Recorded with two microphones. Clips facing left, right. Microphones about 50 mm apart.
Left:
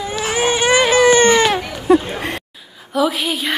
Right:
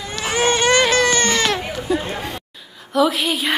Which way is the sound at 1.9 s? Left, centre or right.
Left.